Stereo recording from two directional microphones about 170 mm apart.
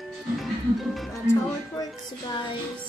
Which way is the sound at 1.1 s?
20° left (ahead or behind).